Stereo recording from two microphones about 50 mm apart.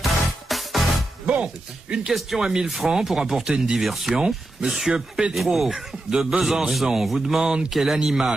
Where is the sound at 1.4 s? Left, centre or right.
Centre.